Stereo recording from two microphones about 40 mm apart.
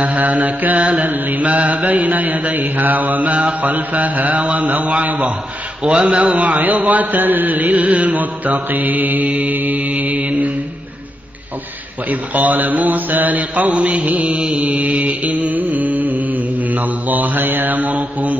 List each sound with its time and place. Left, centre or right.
0.0 s mantra: right
4.9 s mantra: right
7.7 s mantra: right
12.1 s mantra: right